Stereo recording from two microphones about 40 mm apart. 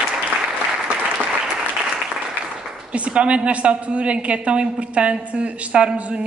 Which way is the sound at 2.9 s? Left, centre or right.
Right.